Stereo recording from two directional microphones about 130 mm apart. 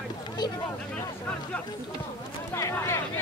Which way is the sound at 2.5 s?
20° left (ahead or behind).